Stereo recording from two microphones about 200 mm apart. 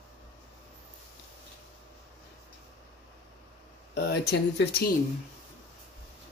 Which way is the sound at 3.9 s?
55° left (ahead or behind).